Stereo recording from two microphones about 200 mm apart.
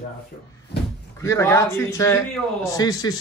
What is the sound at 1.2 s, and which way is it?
A man's voice, 15° left (ahead or behind).